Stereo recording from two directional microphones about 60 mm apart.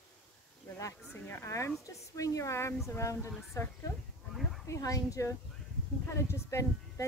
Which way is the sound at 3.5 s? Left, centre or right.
Left.